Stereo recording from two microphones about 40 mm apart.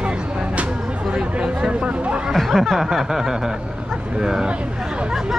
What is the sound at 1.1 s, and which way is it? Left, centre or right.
Speech, centre.